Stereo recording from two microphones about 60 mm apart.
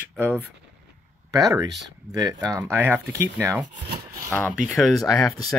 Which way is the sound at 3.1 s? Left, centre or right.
Right.